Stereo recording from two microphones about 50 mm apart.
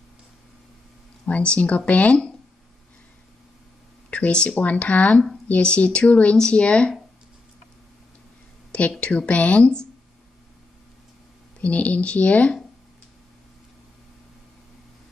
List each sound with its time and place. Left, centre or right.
1.2 s speech: left
4.1 s speech: left
9.0 s speech: left
11.6 s speech: left